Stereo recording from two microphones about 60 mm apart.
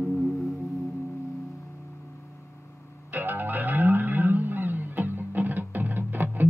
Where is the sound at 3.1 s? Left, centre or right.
Right.